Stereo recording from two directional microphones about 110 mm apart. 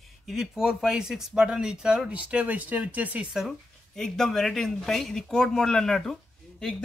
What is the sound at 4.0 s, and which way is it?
Speech, 5° left (ahead or behind).